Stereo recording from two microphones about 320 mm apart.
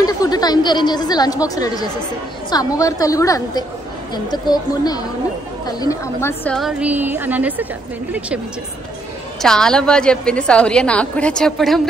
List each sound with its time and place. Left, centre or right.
0.0 s a woman's voice: centre
9.4 s a woman's voice: centre